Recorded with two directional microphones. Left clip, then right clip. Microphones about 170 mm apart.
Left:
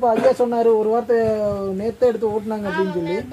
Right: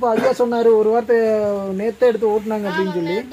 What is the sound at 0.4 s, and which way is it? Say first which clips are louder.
Speech: right 2 dB; 50° right (ahead or behind).